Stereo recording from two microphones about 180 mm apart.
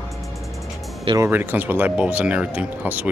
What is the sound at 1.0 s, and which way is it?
Speech, 15° right (ahead or behind).